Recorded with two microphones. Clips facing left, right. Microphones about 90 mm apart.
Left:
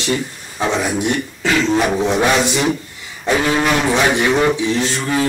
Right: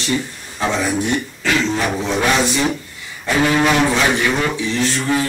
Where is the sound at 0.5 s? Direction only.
15° left (ahead or behind).